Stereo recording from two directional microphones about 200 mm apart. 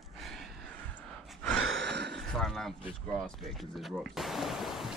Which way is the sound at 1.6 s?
65° right (ahead or behind).